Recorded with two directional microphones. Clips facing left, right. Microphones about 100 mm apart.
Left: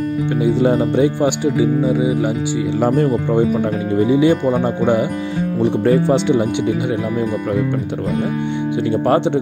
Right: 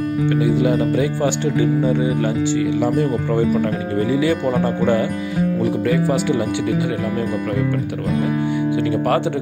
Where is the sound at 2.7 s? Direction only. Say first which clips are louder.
Left 2 dB; 45° left (ahead or behind).